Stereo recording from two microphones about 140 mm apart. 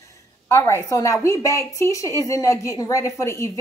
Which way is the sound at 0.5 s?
20° left (ahead or behind).